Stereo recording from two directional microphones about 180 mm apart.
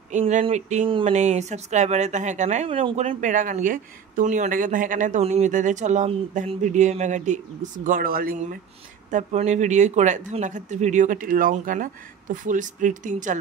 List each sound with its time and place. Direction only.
0.1 s a sound: 40° right (ahead or behind)
0.9 s speech: 40° right (ahead or behind)
9.1 s speech: 40° right (ahead or behind)